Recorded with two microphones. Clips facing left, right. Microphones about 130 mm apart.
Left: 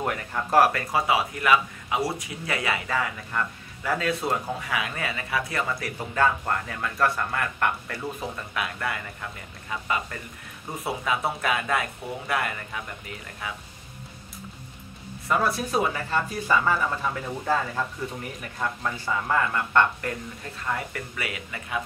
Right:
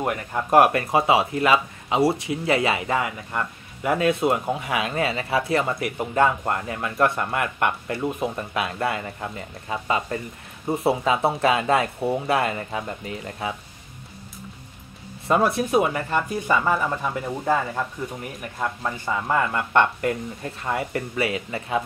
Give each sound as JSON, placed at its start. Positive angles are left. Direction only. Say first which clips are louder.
{"t": 0.0, "sound": "speech", "louder": "right 3 dB", "side_deg": -20}
{"t": 15.2, "sound": "speech", "louder": "right 5 dB", "side_deg": -25}